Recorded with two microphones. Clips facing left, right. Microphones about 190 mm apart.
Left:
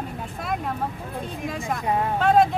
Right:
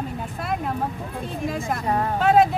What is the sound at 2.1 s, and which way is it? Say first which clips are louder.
Speech: right 1 dB; 5° right (ahead or behind).